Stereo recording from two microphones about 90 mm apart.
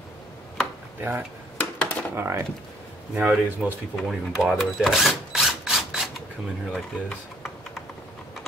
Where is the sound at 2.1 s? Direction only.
30° right (ahead or behind).